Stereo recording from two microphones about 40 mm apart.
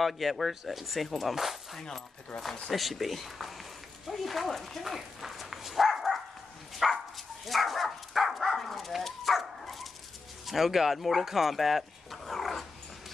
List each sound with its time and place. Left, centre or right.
0.0 s speech: centre
2.3 s speech: left
2.7 s speech: centre
6.7 s dog: centre
10.4 s speech: centre